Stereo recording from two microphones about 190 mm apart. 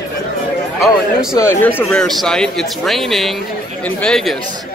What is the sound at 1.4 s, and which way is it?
Speech, 10° left (ahead or behind).